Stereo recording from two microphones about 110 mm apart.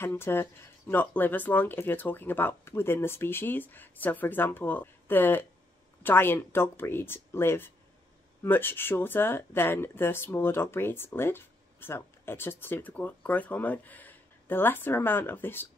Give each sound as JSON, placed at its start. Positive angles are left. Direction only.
{"t": 0.0, "sound": "speech", "side_deg": 20}